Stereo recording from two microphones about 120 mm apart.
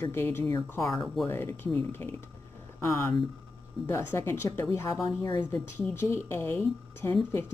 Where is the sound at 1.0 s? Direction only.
Centre (ahead or behind).